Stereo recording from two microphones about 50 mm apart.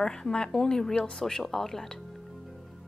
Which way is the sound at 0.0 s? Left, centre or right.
Centre.